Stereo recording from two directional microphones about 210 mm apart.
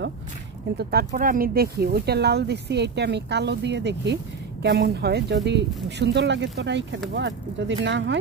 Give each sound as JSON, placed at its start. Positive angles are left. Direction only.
{"t": 0.7, "sound": "speech", "side_deg": -45}